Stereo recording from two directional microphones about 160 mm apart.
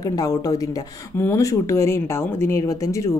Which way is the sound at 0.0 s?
25° left (ahead or behind).